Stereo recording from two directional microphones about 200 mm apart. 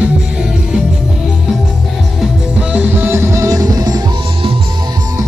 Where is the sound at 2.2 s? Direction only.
5° right (ahead or behind).